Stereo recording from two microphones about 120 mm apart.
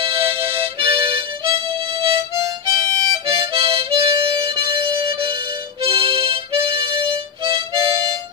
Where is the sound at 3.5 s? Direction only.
50° right (ahead or behind).